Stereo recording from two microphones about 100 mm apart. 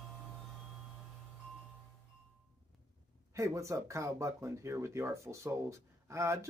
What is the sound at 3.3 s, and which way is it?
Speech, 30° right (ahead or behind).